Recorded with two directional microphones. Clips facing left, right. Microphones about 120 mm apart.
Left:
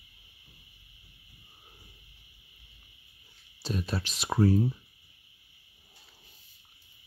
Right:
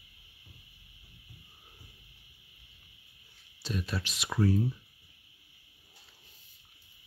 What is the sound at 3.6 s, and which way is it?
Speech, 35° left (ahead or behind).